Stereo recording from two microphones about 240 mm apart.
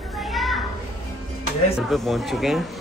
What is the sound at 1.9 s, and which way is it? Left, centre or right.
Speech, centre.